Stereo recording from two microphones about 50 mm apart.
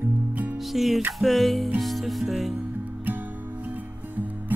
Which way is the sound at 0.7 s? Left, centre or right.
Centre.